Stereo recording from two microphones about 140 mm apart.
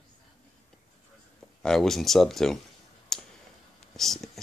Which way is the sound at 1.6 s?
5° left (ahead or behind).